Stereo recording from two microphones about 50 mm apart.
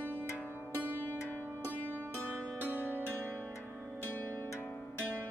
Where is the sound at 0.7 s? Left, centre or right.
Right.